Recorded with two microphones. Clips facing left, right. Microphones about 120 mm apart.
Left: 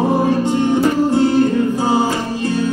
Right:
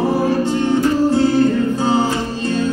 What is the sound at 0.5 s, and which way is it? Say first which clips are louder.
Music: left 1 dB; 15° left (ahead or behind).